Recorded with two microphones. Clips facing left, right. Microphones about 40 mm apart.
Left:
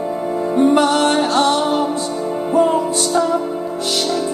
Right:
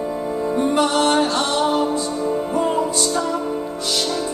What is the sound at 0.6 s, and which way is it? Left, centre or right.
Music, left.